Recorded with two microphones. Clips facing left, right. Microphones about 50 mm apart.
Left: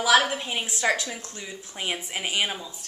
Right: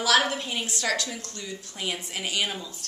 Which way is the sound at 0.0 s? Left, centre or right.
Centre.